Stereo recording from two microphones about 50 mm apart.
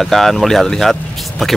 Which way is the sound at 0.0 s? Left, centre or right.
Centre.